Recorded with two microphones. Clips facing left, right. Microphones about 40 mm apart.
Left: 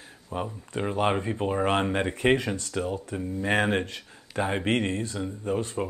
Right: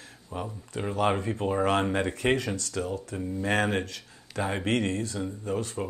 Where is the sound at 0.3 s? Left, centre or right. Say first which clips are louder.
Left 3 dB; left.